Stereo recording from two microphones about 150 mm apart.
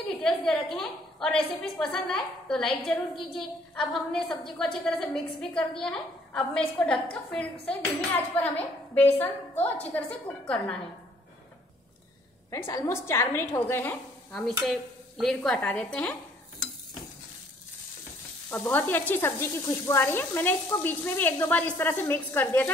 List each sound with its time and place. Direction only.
0.2 s a woman's voice: 5° left (ahead or behind)
8.4 s sizzle: 10° left (ahead or behind)
12.4 s sizzle: 20° left (ahead or behind)
14.6 s a woman's voice: centre (ahead or behind)
18.5 s sizzle: 10° left (ahead or behind)